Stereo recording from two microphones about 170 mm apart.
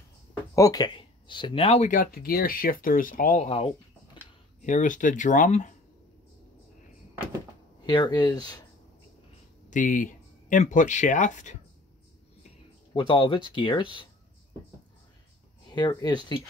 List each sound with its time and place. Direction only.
0.6 s speech: 20° left (ahead or behind)
1.9 s speech: 55° left (ahead or behind)
7.8 s speech: 25° left (ahead or behind)
9.7 s speech: 50° left (ahead or behind)
12.9 s speech: 30° left (ahead or behind)
15.7 s speech: 25° left (ahead or behind)